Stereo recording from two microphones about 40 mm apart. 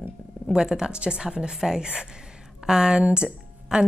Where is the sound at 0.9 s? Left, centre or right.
Right.